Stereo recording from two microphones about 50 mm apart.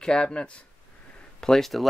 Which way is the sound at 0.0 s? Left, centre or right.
Centre.